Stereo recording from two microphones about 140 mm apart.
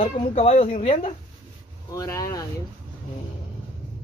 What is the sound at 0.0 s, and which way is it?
Speech, 45° left (ahead or behind).